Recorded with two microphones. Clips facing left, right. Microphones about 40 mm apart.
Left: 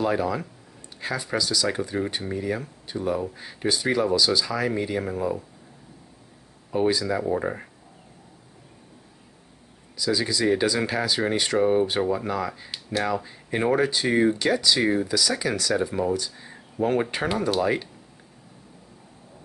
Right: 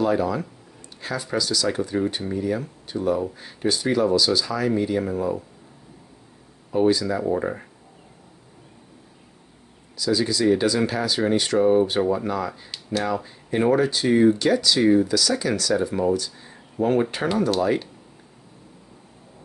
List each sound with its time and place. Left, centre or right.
0.0 s speech: centre
6.7 s speech: centre
9.9 s speech: centre
12.7 s speech: centre
13.1 s speech: centre